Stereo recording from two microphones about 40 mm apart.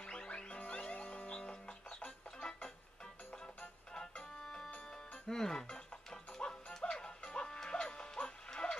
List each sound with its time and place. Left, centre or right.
0.0 s music: left
4.4 s music: centre
4.6 s music: left
5.3 s speech: centre
6.3 s music: left
8.5 s dog: centre